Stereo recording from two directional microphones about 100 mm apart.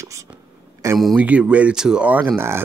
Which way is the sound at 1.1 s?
15° right (ahead or behind).